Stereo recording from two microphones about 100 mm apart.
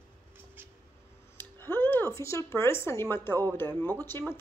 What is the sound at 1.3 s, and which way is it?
A woman's voice, 20° left (ahead or behind).